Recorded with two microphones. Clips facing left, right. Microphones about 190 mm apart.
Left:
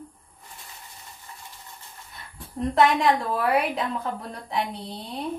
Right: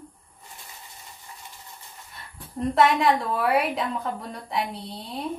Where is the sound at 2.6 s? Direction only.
Centre (ahead or behind).